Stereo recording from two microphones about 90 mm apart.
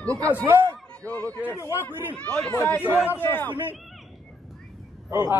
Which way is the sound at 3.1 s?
25° left (ahead or behind).